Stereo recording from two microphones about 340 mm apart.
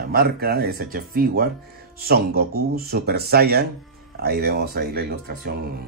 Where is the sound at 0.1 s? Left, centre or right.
Right.